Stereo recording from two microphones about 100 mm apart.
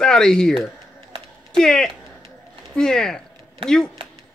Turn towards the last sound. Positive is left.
turn(degrees=5)  # may be behind; listen again after turning